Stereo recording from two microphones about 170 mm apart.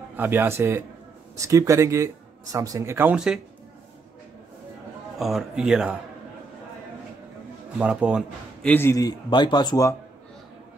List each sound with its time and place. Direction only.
0.1 s speech: 10° right (ahead or behind)
5.2 s speech: centre (ahead or behind)
7.8 s speech: 5° right (ahead or behind)
8.6 s a man's voice: 15° left (ahead or behind)